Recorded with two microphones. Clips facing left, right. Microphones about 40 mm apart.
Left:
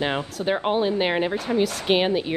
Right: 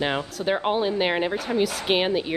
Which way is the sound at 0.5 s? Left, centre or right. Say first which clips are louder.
Left 1 dB; centre.